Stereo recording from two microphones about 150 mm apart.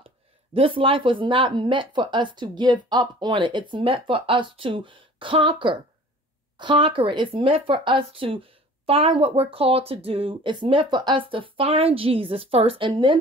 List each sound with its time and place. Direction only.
0.0 s speech: 40° right (ahead or behind)